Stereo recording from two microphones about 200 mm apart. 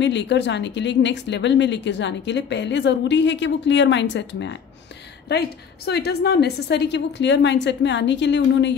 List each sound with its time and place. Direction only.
0.0 s speech: 60° left (ahead or behind)
5.9 s speech: 55° left (ahead or behind)